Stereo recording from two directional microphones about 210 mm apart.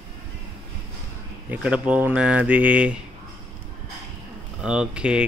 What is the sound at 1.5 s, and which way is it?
Speech, 5° right (ahead or behind).